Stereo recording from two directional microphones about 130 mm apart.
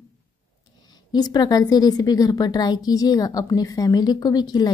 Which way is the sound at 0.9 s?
30° left (ahead or behind).